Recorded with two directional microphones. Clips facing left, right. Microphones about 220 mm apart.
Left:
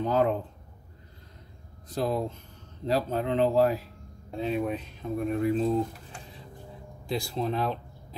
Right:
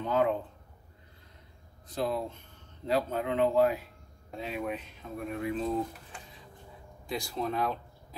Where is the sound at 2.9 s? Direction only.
35° left (ahead or behind).